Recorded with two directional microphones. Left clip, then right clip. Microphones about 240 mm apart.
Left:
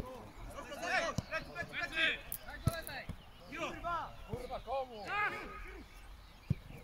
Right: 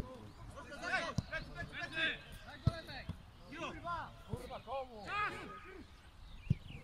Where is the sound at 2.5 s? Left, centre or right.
Centre.